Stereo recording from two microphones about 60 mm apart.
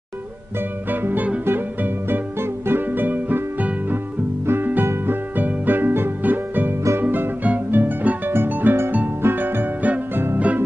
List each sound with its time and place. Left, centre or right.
0.8 s music: right